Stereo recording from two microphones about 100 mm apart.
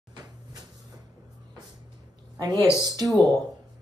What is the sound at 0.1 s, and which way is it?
Cupboard open or close, 40° right (ahead or behind).